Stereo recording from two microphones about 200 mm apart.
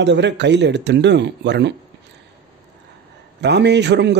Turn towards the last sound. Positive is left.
turn(degrees=-60)  # may be behind; listen again after turning